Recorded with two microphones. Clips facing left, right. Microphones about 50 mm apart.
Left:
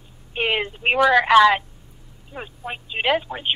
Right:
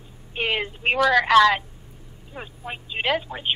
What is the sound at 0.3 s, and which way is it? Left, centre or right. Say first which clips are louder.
A woman's voice: left 2 dB; centre.